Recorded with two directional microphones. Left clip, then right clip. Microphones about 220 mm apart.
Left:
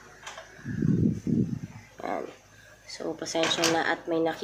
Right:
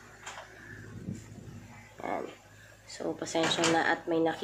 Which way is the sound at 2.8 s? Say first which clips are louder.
Left 2 dB; 5° left (ahead or behind).